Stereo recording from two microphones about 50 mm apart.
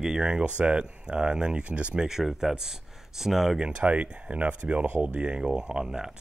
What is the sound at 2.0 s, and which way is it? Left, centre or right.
Speech, centre.